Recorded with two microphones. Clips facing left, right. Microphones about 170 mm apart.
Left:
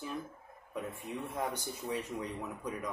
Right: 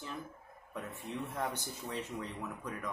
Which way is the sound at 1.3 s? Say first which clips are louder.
Left 1 dB; 10° left (ahead or behind).